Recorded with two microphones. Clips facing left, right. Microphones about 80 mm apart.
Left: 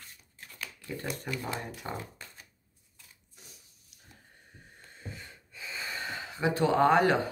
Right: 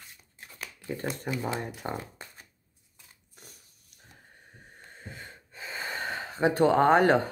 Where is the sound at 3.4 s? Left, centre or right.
Right.